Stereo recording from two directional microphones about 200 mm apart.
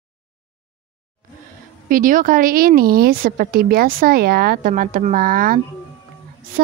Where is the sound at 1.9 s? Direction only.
45° right (ahead or behind).